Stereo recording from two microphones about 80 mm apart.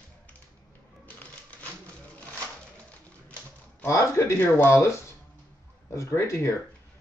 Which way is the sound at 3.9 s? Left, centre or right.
Left.